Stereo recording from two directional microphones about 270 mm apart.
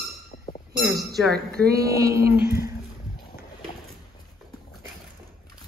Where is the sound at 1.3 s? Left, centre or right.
Right.